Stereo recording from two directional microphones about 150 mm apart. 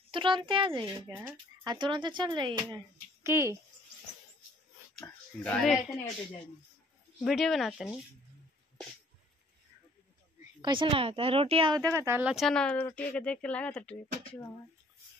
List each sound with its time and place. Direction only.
0.1 s speech: 35° right (ahead or behind)
3.3 s speech: 15° right (ahead or behind)
5.0 s speech: 10° left (ahead or behind)
7.2 s speech: centre (ahead or behind)
10.6 s speech: 35° right (ahead or behind)
11.9 s speech: 15° right (ahead or behind)
12.4 s speech: 5° left (ahead or behind)